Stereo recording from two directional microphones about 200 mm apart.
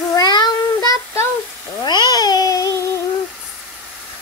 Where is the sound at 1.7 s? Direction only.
20° left (ahead or behind).